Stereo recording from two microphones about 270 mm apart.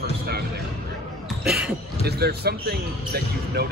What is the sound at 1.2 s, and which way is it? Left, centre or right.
Basketball bounce, centre.